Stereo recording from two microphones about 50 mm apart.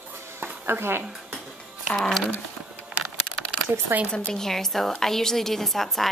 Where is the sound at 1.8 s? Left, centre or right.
Centre.